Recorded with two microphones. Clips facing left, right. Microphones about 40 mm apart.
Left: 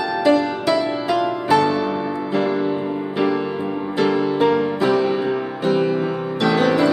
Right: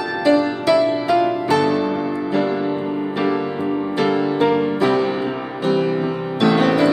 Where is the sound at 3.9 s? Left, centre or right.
Centre.